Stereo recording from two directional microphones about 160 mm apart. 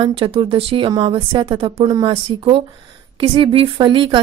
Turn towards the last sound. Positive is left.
turn(degrees=-30)  # may be behind; listen again after turning